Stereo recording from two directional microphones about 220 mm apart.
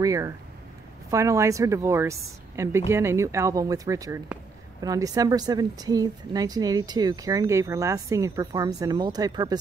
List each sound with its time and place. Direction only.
0.0 s speech: 15° right (ahead or behind)